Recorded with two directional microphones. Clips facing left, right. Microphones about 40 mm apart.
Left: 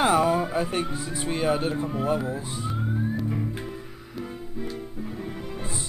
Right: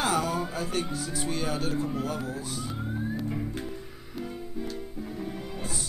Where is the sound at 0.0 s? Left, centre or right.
Left.